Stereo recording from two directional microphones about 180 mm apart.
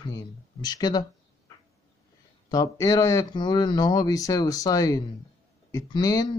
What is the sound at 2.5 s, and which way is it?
Speech, 20° left (ahead or behind).